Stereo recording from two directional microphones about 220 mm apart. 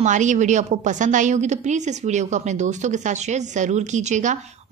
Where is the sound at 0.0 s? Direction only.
35° right (ahead or behind).